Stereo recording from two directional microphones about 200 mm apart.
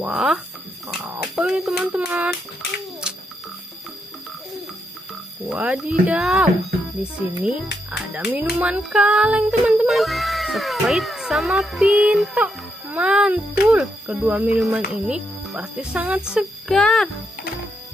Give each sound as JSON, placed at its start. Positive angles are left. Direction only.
{"t": 0.0, "sound": "speech", "side_deg": 0}
{"t": 3.1, "sound": "a sound", "side_deg": -5}
{"t": 5.5, "sound": "speech", "side_deg": -5}
{"t": 8.5, "sound": "music", "side_deg": -5}
{"t": 13.7, "sound": "speech", "side_deg": -5}